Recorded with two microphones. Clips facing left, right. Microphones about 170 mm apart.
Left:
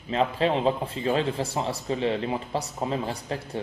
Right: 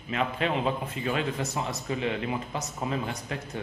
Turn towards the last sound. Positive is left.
turn(degrees=30)  # may be behind; listen again after turning